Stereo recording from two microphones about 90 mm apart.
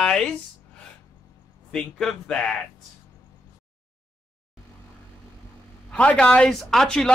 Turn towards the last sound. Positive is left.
turn(degrees=5)  # may be behind; listen again after turning